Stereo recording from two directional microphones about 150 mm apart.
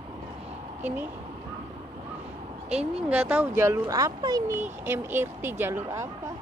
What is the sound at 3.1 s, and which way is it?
Speech, 10° right (ahead or behind).